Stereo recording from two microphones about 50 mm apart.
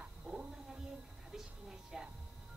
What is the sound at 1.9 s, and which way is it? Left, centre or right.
Music, centre.